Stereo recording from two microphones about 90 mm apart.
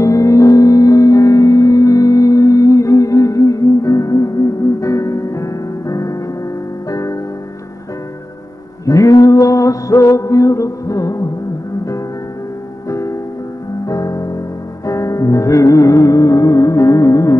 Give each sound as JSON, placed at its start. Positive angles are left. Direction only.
{"t": 0.0, "sound": "music", "side_deg": 35}
{"t": 8.8, "sound": "mantra", "side_deg": 40}
{"t": 12.9, "sound": "music", "side_deg": 35}